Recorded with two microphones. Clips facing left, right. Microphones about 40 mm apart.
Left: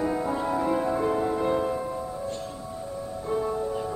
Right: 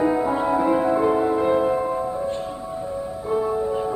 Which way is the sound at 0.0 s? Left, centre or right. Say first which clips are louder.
Right 6 dB; right.